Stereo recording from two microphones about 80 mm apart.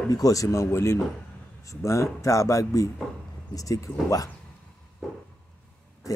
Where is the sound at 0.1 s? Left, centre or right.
Left.